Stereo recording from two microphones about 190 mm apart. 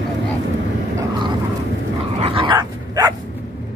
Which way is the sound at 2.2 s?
30° right (ahead or behind).